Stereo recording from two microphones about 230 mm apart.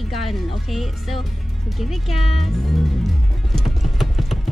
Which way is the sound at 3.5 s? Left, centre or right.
Centre.